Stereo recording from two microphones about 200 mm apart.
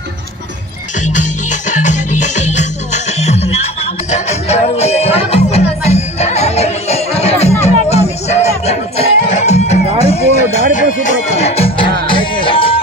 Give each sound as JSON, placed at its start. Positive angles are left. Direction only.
{"t": 1.0, "sound": "music", "side_deg": 40}